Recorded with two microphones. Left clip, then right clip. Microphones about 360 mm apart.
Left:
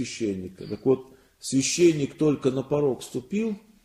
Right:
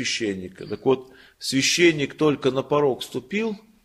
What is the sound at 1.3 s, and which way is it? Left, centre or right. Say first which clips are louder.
A man's voice: right 4 dB; right.